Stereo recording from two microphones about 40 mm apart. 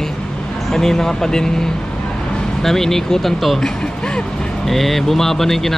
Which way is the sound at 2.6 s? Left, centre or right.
Centre.